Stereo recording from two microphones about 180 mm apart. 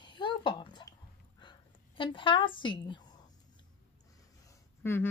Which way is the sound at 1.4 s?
25° left (ahead or behind).